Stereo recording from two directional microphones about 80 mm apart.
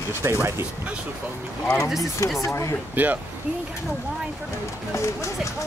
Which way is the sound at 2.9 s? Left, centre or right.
Right.